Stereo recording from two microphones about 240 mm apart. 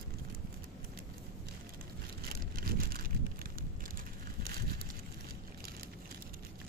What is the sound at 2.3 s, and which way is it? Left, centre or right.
Vehicle, right.